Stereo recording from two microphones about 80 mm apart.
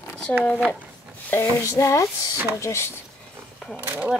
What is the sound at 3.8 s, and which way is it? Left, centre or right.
Speech, right.